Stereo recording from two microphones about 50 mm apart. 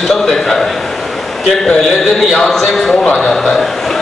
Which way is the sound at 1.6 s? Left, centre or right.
Centre.